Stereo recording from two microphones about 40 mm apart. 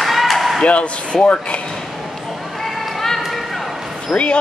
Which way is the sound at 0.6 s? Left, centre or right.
Left.